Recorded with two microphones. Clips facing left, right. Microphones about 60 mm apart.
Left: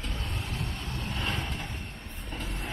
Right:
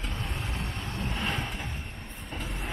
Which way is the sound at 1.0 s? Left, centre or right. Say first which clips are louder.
Right 2 dB; centre.